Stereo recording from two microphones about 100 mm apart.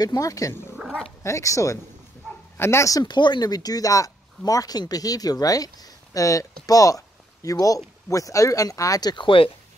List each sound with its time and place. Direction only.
0.0 s speech: 35° left (ahead or behind)
9.1 s speech: 55° left (ahead or behind)